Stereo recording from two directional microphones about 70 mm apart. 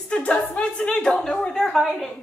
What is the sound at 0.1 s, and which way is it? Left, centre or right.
A woman's voice, centre.